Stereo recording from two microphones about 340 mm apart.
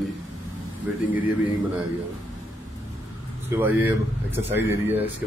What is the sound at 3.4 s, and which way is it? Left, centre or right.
Speech, centre.